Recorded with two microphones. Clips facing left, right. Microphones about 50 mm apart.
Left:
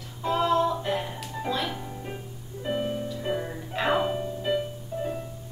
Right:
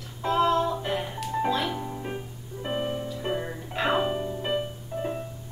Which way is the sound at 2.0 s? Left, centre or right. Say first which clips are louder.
Right 3 dB; right.